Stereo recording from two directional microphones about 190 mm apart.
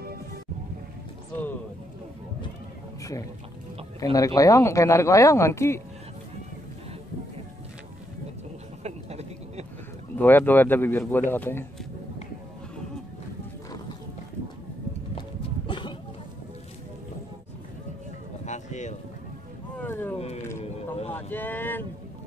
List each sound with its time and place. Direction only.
3.0 s liquid: 15° left (ahead or behind)
4.0 s speech: 20° left (ahead or behind)
8.8 s a sound: 35° right (ahead or behind)
10.1 s speech: 10° left (ahead or behind)
15.1 s a sound: 25° left (ahead or behind)
18.4 s a sound: 40° left (ahead or behind)
19.8 s boat: 10° left (ahead or behind)
20.6 s vehicle: 30° left (ahead or behind)
21.1 s boat: 10° left (ahead or behind)